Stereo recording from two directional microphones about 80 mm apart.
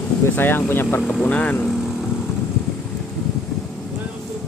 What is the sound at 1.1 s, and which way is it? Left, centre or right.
Speech, centre.